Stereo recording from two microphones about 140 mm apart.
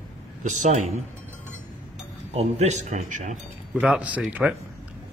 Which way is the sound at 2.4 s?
55° right (ahead or behind).